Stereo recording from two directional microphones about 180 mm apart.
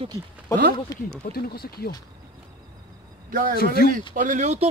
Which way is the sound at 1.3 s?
60° left (ahead or behind).